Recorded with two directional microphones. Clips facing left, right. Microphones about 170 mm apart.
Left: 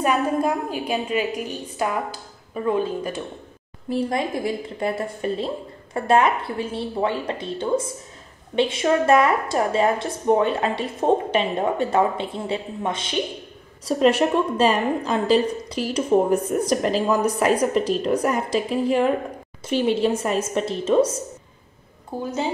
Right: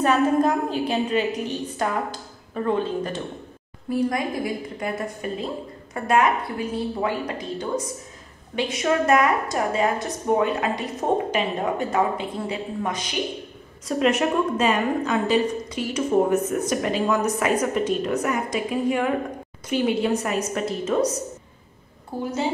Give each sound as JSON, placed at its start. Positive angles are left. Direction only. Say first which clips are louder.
{"t": 0.0, "sound": "a woman's voice", "louder": "right 2 dB", "side_deg": 10}
{"t": 3.9, "sound": "a woman's voice", "louder": "even", "side_deg": 25}
{"t": 11.9, "sound": "a woman's voice", "louder": "left 2 dB", "side_deg": 30}
{"t": 22.1, "sound": "a woman's voice", "louder": "even", "side_deg": 15}